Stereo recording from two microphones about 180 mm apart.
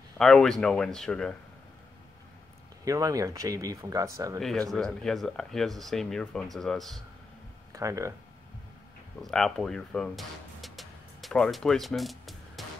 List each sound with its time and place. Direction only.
0.2 s speech: centre (ahead or behind)
2.8 s speech: 20° right (ahead or behind)
4.4 s speech: centre (ahead or behind)
7.7 s speech: 15° right (ahead or behind)
9.2 s speech: centre (ahead or behind)